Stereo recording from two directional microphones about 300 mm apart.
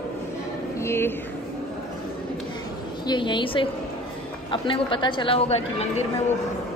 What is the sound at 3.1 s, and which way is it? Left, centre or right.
A woman's voice, centre.